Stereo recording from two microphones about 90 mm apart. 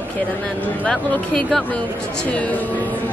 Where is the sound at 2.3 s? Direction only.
15° left (ahead or behind).